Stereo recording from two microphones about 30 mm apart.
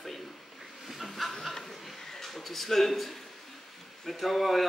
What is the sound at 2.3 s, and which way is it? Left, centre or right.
Speech, centre.